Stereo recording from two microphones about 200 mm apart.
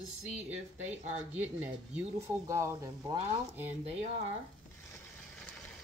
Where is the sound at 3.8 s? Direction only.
30° right (ahead or behind).